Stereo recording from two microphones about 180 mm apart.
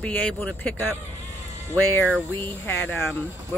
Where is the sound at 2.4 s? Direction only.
10° left (ahead or behind).